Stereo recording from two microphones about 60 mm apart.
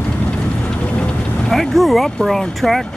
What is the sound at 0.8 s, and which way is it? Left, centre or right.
Vehicle, centre.